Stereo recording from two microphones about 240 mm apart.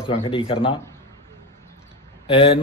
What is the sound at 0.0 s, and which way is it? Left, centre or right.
Speech, left.